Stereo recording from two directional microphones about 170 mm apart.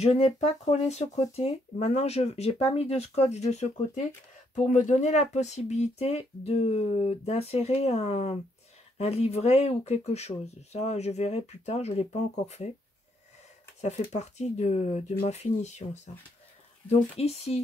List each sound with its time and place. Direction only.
0.0 s speech: 40° left (ahead or behind)
13.7 s speech: 40° left (ahead or behind)